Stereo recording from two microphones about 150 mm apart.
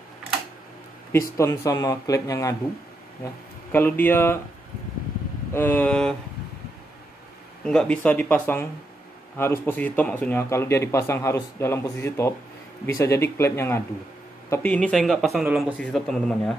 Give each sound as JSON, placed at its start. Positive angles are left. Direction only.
{"t": 1.3, "sound": "speech", "side_deg": 20}
{"t": 3.7, "sound": "a man's voice", "side_deg": 15}
{"t": 5.5, "sound": "a man's voice", "side_deg": 15}
{"t": 7.6, "sound": "a man's voice", "side_deg": 5}